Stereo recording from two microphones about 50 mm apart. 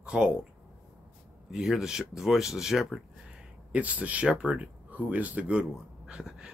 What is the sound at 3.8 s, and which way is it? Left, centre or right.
Speech, right.